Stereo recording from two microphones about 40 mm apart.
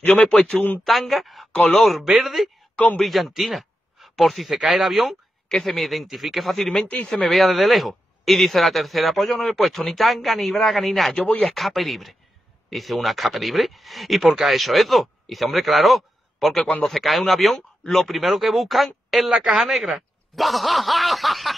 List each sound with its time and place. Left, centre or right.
0.3 s a man's voice: left
0.8 s a man's voice: centre
1.5 s speech: left
1.8 s a man's voice: centre
2.7 s speech: left
3.0 s a man's voice: centre
11.1 s a man's voice: left
11.4 s a man's voice: centre
16.6 s a man's voice: left
16.9 s a man's voice: centre
19.4 s speech: centre
19.7 s a sound: centre